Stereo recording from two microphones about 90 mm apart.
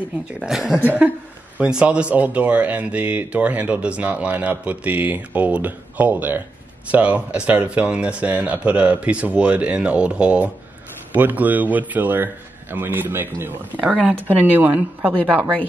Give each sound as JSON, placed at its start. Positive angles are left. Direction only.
{"t": 0.4, "sound": "a woman's voice", "side_deg": -5}
{"t": 0.8, "sound": "speech", "side_deg": -20}
{"t": 13.8, "sound": "speech", "side_deg": -10}
{"t": 14.2, "sound": "speech", "side_deg": -20}